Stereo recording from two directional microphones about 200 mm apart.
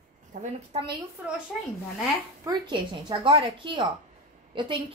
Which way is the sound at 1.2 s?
10° right (ahead or behind).